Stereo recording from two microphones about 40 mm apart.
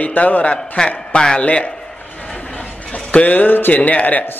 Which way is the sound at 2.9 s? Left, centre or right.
Left.